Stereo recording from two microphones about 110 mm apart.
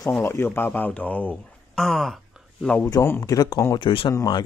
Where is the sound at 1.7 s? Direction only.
5° left (ahead or behind).